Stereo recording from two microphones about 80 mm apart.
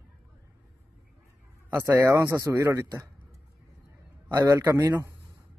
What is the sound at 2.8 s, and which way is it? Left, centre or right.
Speech, right.